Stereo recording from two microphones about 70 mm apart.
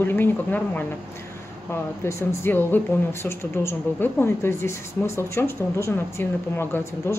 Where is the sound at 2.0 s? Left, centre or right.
Left.